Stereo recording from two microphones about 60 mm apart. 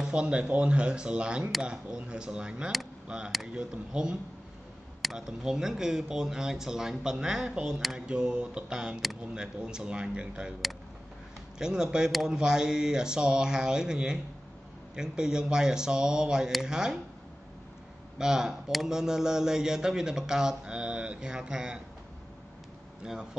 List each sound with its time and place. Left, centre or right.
0.1 s speech: centre
7.6 s a sound: centre
8.1 s speech: centre
11.5 s speech: centre
12.1 s a sound: centre
12.4 s speech: centre
18.1 s speech: centre